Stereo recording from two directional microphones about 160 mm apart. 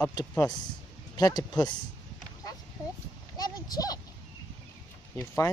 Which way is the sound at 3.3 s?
25° left (ahead or behind).